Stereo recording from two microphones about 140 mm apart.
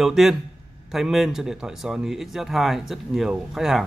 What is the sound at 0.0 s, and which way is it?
Speech, centre (ahead or behind).